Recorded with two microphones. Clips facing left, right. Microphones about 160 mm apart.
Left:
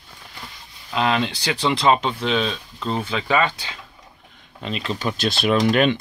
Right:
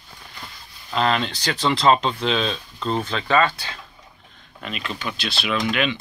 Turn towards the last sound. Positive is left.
turn(degrees=45)  # may be behind; listen again after turning